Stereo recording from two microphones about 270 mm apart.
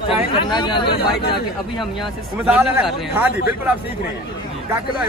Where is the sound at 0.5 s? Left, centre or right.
Centre.